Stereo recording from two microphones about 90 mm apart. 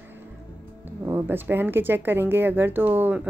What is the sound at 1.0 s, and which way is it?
A woman's voice, 25° right (ahead or behind).